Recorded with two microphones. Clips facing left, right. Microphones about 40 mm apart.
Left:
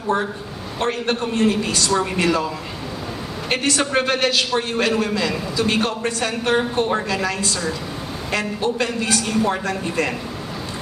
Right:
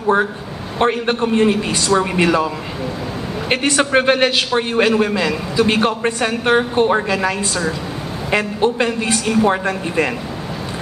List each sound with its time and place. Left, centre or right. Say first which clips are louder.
0.7 s a man's voice: right 5 dB; right